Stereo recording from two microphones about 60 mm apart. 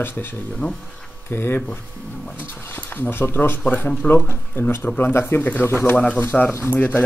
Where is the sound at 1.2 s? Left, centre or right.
Left.